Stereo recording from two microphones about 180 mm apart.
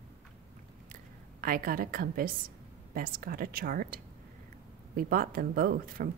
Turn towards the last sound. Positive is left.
turn(degrees=-55)  # may be behind; listen again after turning